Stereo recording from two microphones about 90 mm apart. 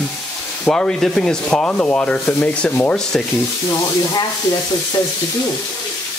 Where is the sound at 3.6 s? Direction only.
45° left (ahead or behind).